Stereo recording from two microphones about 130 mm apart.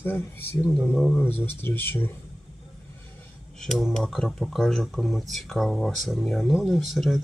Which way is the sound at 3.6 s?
5° left (ahead or behind).